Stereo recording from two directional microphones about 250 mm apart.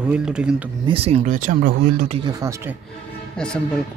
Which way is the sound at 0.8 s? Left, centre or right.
Right.